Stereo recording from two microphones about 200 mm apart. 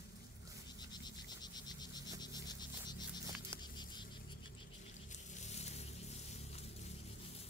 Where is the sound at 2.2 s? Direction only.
20° left (ahead or behind).